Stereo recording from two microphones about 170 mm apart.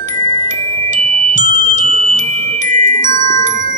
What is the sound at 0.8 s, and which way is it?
Music, 45° right (ahead or behind).